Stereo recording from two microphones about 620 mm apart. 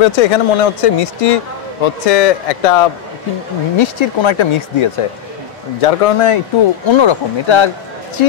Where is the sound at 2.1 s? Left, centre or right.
Left.